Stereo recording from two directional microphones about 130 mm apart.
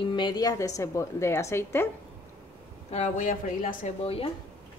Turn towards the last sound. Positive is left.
turn(degrees=50)  # may be behind; listen again after turning